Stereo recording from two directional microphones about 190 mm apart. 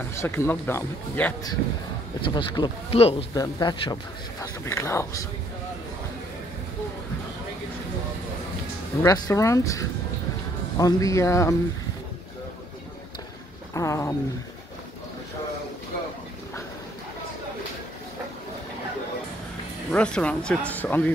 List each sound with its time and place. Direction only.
0.2 s speech: 10° left (ahead or behind)
2.2 s speech: 25° left (ahead or behind)
9.0 s speech: 15° left (ahead or behind)
13.7 s speech: 15° left (ahead or behind)
19.9 s speech: 5° left (ahead or behind)